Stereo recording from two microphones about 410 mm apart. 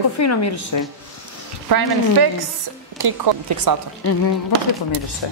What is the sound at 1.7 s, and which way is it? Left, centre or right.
Speech, right.